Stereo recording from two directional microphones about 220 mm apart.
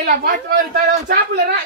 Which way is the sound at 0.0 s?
40° right (ahead or behind).